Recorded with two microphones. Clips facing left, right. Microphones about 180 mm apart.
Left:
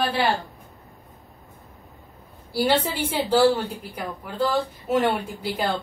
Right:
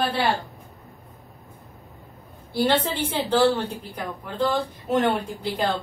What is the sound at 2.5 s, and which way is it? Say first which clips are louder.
A woman's voice: even; 5° left (ahead or behind).